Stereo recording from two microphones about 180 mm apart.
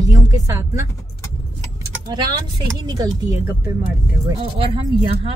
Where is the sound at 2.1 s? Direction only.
25° right (ahead or behind).